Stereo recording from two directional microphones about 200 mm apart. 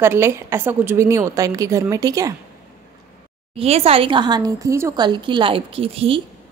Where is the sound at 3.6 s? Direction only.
30° right (ahead or behind).